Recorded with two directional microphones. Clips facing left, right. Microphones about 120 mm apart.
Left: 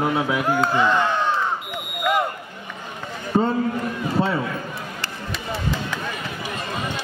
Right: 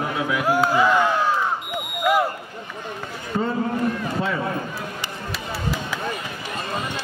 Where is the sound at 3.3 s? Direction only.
30° left (ahead or behind).